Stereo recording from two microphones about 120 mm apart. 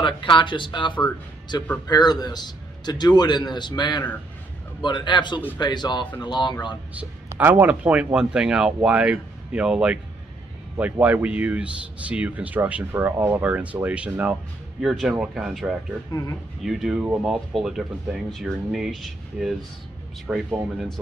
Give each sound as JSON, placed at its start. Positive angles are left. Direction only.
{"t": 0.0, "sound": "a man's voice", "side_deg": 45}
{"t": 7.3, "sound": "speech", "side_deg": -10}
{"t": 16.1, "sound": "speech", "side_deg": 25}
{"t": 16.6, "sound": "speech", "side_deg": 0}